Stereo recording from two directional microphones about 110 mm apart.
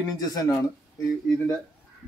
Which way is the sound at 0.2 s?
35° left (ahead or behind).